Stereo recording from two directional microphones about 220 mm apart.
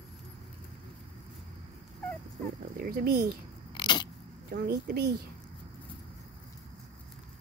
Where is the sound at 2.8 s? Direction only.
45° right (ahead or behind).